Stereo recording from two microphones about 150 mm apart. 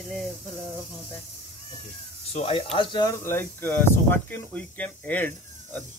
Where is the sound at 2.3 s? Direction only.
40° left (ahead or behind).